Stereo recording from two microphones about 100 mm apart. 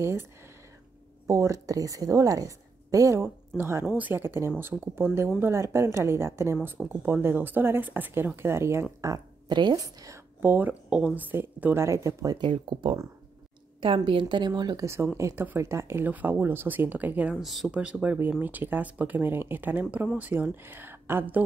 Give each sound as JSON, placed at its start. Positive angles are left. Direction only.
{"t": 0.0, "sound": "a woman's voice", "side_deg": -25}
{"t": 3.8, "sound": "speech", "side_deg": -15}
{"t": 9.0, "sound": "a sound", "side_deg": -35}
{"t": 9.6, "sound": "a woman's voice", "side_deg": -40}
{"t": 10.4, "sound": "speech", "side_deg": -20}
{"t": 12.4, "sound": "a woman's voice", "side_deg": -55}
{"t": 15.1, "sound": "speech", "side_deg": -30}
{"t": 17.4, "sound": "speech", "side_deg": 0}
{"t": 17.6, "sound": "speech", "side_deg": -15}